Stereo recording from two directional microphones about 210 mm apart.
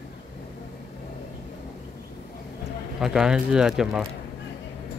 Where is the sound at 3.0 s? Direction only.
5° right (ahead or behind).